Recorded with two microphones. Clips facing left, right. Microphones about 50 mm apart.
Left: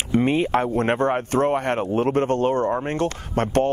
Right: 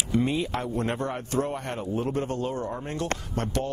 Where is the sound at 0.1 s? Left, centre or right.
Left.